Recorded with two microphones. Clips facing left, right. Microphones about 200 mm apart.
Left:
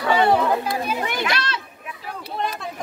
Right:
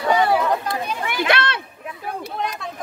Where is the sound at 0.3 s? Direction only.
Centre (ahead or behind).